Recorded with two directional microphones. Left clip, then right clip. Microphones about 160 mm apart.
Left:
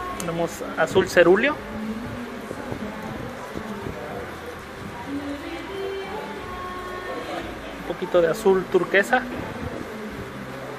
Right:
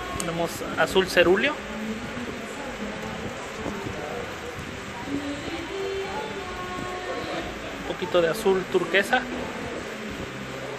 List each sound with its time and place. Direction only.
0.2 s speech: 15° left (ahead or behind)
1.0 s speech: 25° left (ahead or behind)
8.1 s speech: 20° left (ahead or behind)